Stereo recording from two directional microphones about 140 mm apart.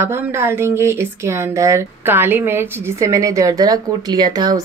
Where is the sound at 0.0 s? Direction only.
20° right (ahead or behind).